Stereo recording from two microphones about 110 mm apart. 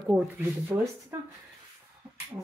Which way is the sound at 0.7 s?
35° right (ahead or behind).